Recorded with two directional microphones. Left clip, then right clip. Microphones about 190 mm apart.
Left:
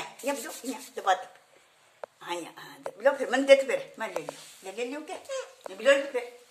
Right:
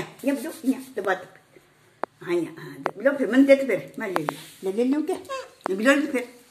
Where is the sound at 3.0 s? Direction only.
Centre (ahead or behind).